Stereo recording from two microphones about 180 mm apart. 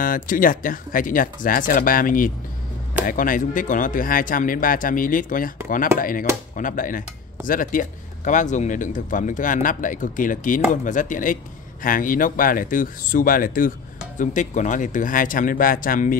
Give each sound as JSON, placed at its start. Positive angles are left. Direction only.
{"t": 0.0, "sound": "speech", "side_deg": 50}